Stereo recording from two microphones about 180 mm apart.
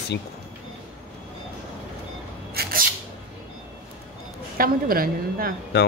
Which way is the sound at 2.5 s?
50° right (ahead or behind).